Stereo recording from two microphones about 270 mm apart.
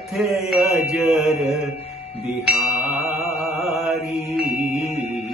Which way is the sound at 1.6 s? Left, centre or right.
Left.